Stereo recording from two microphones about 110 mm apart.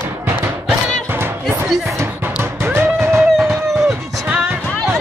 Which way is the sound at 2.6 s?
20° right (ahead or behind).